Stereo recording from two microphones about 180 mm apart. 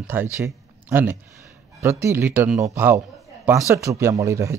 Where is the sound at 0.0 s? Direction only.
10° right (ahead or behind).